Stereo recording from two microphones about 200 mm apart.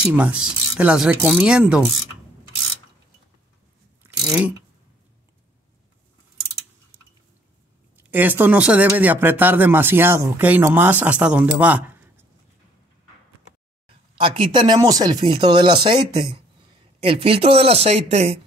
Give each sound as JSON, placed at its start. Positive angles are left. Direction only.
{"t": 0.0, "sound": "speech", "side_deg": -5}
{"t": 7.9, "sound": "speech", "side_deg": -10}
{"t": 13.8, "sound": "speech", "side_deg": -25}